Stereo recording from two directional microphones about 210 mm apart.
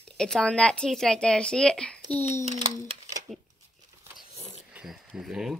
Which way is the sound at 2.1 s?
30° left (ahead or behind).